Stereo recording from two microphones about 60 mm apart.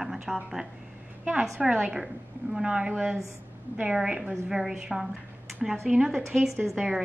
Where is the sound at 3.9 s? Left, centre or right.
Centre.